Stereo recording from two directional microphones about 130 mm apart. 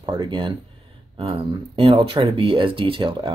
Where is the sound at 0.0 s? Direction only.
35° right (ahead or behind).